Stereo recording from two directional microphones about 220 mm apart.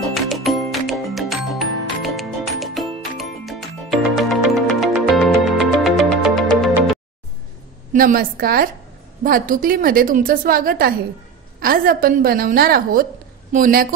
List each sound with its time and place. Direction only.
0.1 s music: centre (ahead or behind)
7.9 s a woman's voice: 40° right (ahead or behind)